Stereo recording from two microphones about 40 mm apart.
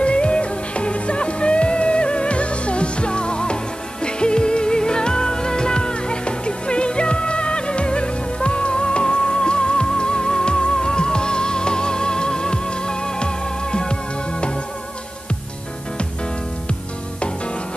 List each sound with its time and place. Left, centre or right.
0.0 s music: left